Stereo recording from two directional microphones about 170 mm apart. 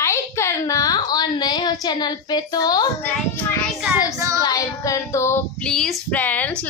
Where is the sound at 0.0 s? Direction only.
15° left (ahead or behind).